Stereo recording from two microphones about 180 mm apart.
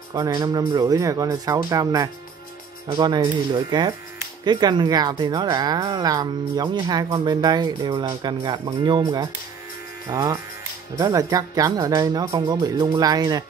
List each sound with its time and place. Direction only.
0.1 s speech: 20° right (ahead or behind)